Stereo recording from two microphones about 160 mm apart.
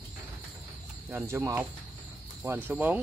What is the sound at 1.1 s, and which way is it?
Speech, 15° right (ahead or behind).